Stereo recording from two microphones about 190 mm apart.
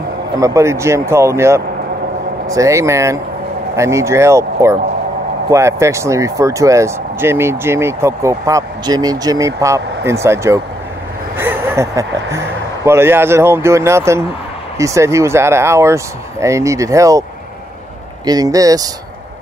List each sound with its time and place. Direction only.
0.4 s speech: 15° right (ahead or behind)
18.2 s speech: 20° right (ahead or behind)